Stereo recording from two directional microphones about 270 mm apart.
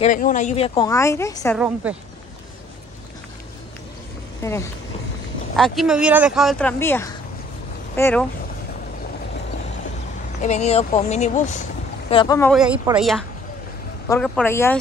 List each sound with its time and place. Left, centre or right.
0.0 s speech: left; by 1.6 s centre
1.8 s speech: centre
4.4 s speech: centre
5.6 s speech: centre
10.4 s speech: left
12.8 s speech: centre